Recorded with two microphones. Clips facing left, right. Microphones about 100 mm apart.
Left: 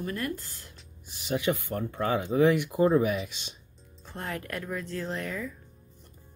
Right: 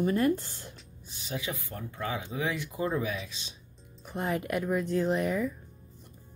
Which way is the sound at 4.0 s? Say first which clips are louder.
Right 5 dB; 15° right (ahead or behind).